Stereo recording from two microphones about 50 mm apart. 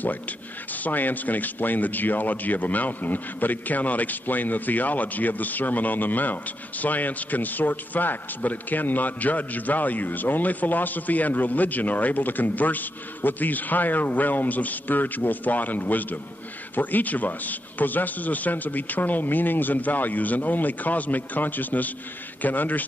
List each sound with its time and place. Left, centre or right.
0.7 s a man's voice: left